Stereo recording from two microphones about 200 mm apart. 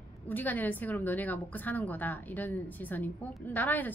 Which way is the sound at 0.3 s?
10° left (ahead or behind).